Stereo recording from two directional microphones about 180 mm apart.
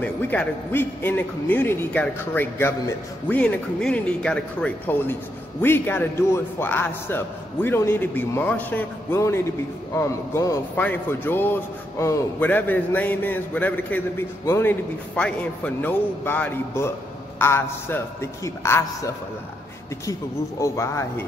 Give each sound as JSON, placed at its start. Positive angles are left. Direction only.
{"t": 0.0, "sound": "a man's voice", "side_deg": 10}